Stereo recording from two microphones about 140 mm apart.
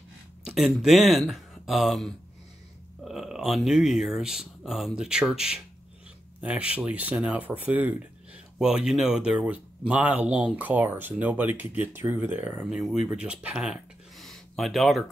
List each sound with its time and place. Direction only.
0.4 s speech: 5° right (ahead or behind)